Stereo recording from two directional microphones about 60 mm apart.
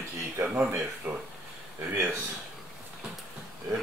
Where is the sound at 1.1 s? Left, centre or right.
Centre.